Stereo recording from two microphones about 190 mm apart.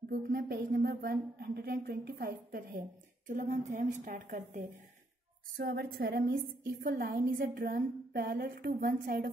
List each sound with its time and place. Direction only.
0.3 s a woman's voice: 55° right (ahead or behind)
3.3 s a woman's voice: 40° right (ahead or behind)
5.6 s a woman's voice: 55° right (ahead or behind)